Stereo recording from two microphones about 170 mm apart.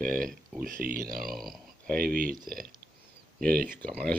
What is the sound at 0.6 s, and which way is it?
Speech, 55° right (ahead or behind).